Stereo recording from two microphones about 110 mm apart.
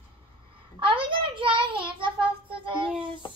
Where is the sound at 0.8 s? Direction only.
50° right (ahead or behind).